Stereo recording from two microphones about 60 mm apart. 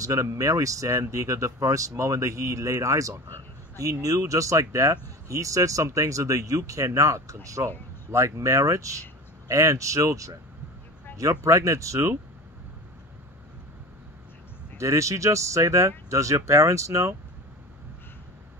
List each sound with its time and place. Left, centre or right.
0.0 s speech: right
14.8 s speech: right